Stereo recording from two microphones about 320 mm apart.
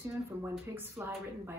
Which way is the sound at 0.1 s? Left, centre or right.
Centre.